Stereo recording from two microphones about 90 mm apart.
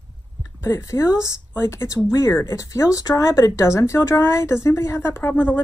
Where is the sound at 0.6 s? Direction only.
30° left (ahead or behind).